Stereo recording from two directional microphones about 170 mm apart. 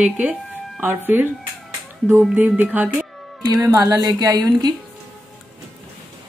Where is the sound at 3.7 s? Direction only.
20° right (ahead or behind).